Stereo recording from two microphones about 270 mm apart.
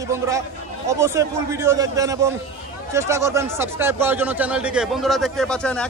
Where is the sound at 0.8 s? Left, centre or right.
Centre.